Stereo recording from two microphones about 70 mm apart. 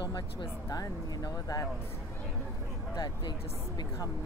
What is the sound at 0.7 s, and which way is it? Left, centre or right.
Speech, left.